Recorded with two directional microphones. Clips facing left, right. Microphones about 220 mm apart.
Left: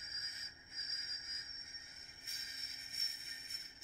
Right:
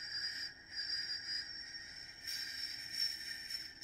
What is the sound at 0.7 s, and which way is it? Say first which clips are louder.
Cricket: right 2 dB; 55° left (ahead or behind).